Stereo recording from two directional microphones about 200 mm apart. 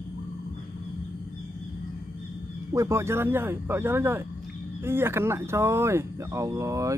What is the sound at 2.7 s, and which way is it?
Speech, 15° right (ahead or behind).